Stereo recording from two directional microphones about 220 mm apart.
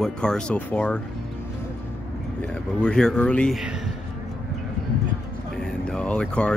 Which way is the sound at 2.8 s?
5° left (ahead or behind).